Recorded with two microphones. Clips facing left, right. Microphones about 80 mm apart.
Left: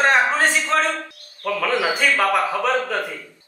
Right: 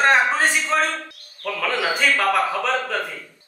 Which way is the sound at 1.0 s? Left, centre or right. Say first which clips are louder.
Left 3 dB; left.